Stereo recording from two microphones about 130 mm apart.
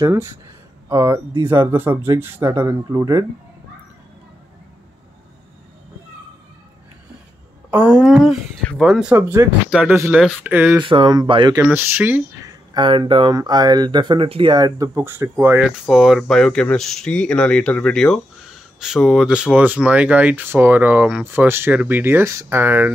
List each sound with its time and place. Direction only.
0.0 s speech: 20° right (ahead or behind)
7.7 s speech: 10° right (ahead or behind)
9.1 s speech: 20° right (ahead or behind)
9.7 s speech: 10° right (ahead or behind)
10.4 s speech: 15° right (ahead or behind)
10.8 s speech: 40° right (ahead or behind)
11.7 s speech: 15° right (ahead or behind)
12.4 s speech: 35° right (ahead or behind); by 15.6 s 15° right (ahead or behind)
15.6 s speech: 5° right (ahead or behind)